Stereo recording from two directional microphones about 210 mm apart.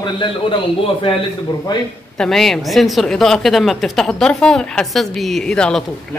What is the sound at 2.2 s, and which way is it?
A woman's voice, centre (ahead or behind).